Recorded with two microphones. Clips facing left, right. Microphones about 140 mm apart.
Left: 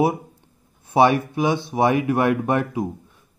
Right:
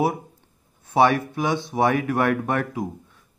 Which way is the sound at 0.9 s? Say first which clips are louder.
Left 2 dB; 15° left (ahead or behind).